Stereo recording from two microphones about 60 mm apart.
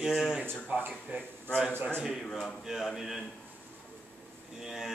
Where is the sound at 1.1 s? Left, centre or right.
Right.